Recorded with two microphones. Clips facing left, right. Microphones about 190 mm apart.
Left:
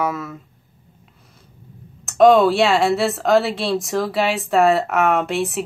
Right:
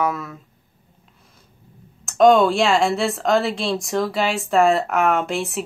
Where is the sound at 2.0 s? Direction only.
Centre (ahead or behind).